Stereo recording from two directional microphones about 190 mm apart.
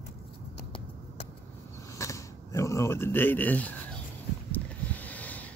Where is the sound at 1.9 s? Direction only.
15° left (ahead or behind).